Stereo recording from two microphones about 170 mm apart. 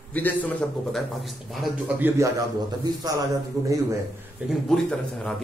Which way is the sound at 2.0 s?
15° right (ahead or behind).